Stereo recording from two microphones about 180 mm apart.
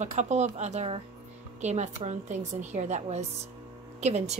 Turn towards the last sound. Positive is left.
turn(degrees=-40)  # may be behind; listen again after turning